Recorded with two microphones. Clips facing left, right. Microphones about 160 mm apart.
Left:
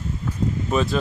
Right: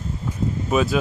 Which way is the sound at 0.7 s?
5° right (ahead or behind).